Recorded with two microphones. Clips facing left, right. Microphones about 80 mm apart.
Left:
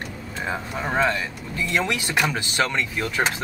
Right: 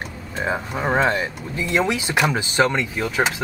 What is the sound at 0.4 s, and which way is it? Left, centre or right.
Speech, right.